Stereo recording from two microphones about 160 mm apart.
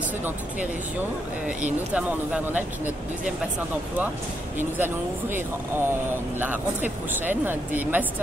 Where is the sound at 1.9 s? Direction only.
10° right (ahead or behind).